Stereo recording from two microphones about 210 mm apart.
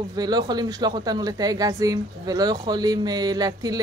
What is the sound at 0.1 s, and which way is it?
Speech, 20° right (ahead or behind).